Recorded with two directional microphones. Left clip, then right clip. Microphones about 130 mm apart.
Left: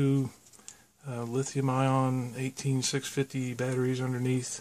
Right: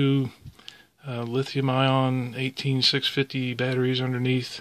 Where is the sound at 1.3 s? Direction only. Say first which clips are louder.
Right 5 dB; 25° right (ahead or behind).